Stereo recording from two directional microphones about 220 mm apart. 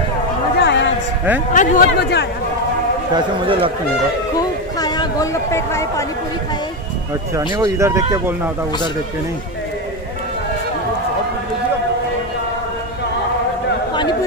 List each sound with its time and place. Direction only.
0.6 s a sound: 55° left (ahead or behind)
1.5 s a man's voice: 40° left (ahead or behind)
3.2 s speech: 25° right (ahead or behind)
4.7 s speech: 20° left (ahead or behind)
7.3 s speech: 15° right (ahead or behind)